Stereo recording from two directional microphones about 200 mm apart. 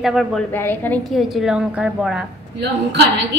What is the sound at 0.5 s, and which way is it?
A woman's voice, 10° left (ahead or behind).